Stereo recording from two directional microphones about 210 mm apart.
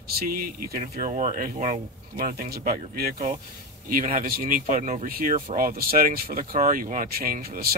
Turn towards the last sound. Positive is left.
turn(degrees=-45)  # may be behind; listen again after turning